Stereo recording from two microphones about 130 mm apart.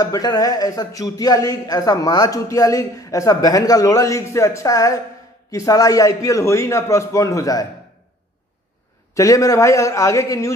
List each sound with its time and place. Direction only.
0.0 s a man's voice: 30° left (ahead or behind)
9.1 s a man's voice: 25° left (ahead or behind)